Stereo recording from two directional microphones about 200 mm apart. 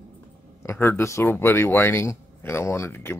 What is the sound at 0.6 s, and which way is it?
Speech, 10° left (ahead or behind).